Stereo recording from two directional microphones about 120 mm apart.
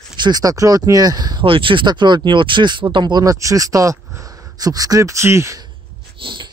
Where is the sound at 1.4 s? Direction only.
45° right (ahead or behind); by 5.6 s 25° right (ahead or behind).